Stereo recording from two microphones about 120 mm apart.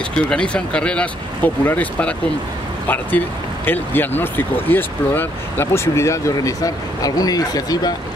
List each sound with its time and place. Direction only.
0.3 s speech: 10° left (ahead or behind); by 7.9 s 30° left (ahead or behind)